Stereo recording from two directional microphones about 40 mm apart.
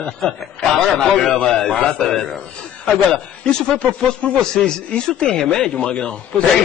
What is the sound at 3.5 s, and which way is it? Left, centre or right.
Speech, left.